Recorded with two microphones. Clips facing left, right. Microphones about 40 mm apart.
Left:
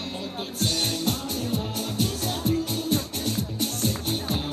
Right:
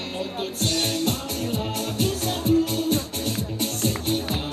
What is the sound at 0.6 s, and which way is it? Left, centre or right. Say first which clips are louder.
Music: right 2 dB; right.